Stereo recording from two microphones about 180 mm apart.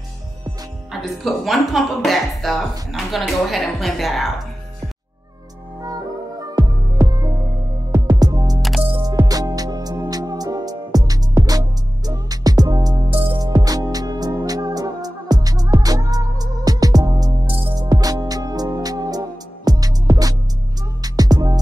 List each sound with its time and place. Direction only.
0.9 s speech: centre (ahead or behind)
5.8 s music: 20° right (ahead or behind)